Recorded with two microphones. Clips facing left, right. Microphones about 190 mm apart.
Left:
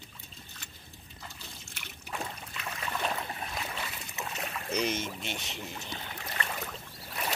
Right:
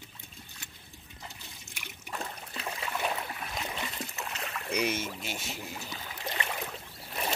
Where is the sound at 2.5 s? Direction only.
35° right (ahead or behind).